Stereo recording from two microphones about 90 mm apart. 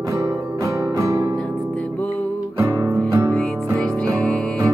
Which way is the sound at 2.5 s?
30° right (ahead or behind).